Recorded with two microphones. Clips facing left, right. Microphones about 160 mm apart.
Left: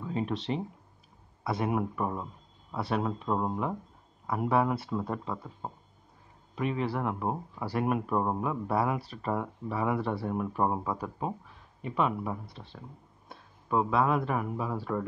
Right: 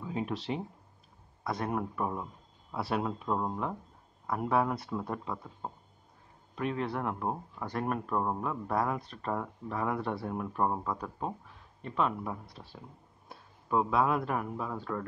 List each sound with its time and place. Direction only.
0.0 s speech: centre (ahead or behind)